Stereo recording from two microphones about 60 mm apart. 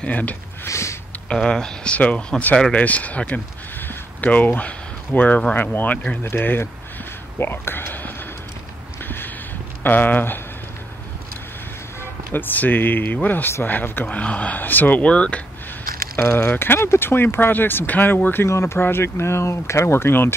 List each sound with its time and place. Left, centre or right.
0.0 s speech: left
0.7 s a sound: left
1.3 s speech: centre
3.8 s a sound: left
5.5 s speech: left
9.0 s a sound: left
9.8 s speech: left
12.3 s speech: left
14.0 s speech: left
15.0 s speech: centre
16.3 s speech: left
18.5 s speech: left